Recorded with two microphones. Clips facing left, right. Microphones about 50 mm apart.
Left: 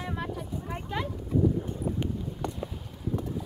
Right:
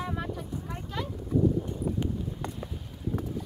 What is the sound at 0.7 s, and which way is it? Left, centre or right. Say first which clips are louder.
Speech: left 4 dB; left.